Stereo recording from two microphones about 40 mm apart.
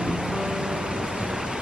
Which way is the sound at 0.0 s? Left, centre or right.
Centre.